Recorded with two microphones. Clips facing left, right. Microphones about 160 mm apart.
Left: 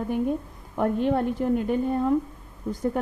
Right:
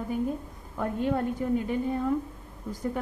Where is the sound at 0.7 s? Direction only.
65° left (ahead or behind).